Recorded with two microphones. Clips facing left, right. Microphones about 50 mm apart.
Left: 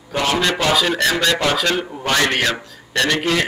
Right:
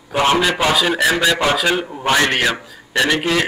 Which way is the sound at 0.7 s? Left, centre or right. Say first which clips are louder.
Right 1 dB; centre.